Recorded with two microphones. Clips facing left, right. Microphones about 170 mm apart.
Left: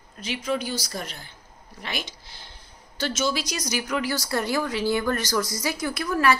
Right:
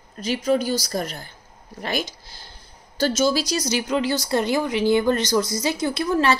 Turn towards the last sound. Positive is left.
turn(degrees=-25)  # may be behind; listen again after turning